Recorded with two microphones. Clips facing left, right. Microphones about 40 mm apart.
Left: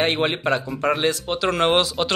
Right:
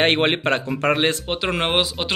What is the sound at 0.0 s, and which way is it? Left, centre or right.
A man's voice, right.